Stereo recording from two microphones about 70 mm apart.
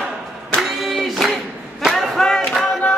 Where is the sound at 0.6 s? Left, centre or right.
Centre.